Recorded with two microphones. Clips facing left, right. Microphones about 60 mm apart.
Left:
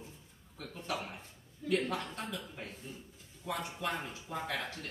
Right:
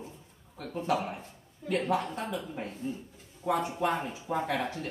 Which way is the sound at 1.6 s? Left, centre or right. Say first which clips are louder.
Right 4 dB; right.